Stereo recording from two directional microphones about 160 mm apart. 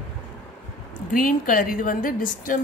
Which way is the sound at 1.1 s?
60° left (ahead or behind).